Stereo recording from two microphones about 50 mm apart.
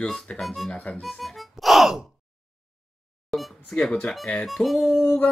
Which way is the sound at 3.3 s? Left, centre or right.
Centre.